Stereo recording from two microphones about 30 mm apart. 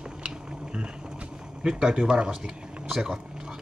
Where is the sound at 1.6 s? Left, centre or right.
Right.